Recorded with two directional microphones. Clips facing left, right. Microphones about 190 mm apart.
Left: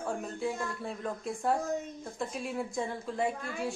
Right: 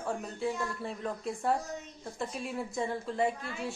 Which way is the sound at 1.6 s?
50° left (ahead or behind).